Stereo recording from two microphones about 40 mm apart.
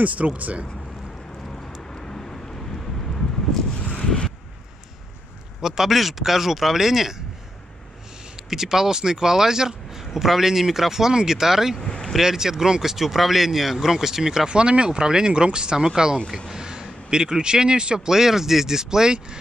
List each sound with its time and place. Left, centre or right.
0.4 s speech: right
2.0 s vehicle: centre
4.0 s vehicle: left
5.6 s speech: centre
8.5 s speech: centre
14.5 s speech: right
16.4 s a sound: centre
17.1 s speech: centre